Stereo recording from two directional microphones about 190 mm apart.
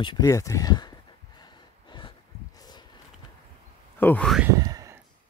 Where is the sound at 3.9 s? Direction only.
10° left (ahead or behind).